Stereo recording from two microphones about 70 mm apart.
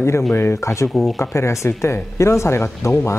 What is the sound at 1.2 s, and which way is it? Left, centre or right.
A man's voice, left.